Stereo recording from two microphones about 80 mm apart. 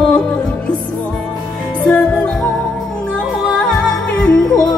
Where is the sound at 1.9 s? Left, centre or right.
Centre.